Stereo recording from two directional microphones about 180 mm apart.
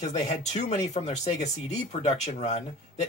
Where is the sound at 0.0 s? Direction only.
40° left (ahead or behind).